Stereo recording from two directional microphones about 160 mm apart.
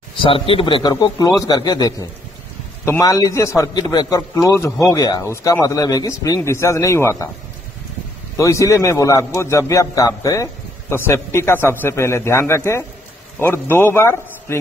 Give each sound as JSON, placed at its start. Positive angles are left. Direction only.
{"t": 0.2, "sound": "a man's voice", "side_deg": 35}
{"t": 8.4, "sound": "a man's voice", "side_deg": 20}